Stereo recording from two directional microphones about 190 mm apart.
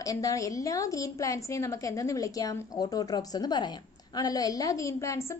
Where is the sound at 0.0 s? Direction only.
20° left (ahead or behind).